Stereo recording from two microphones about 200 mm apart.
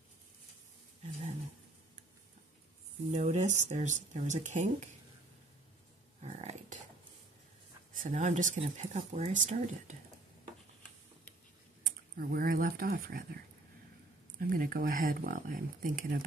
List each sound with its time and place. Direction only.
3.1 s speech: 35° right (ahead or behind)
6.2 s a sound: 35° right (ahead or behind)
7.9 s speech: 40° right (ahead or behind)
11.8 s speech: 50° right (ahead or behind)
14.4 s speech: 45° right (ahead or behind)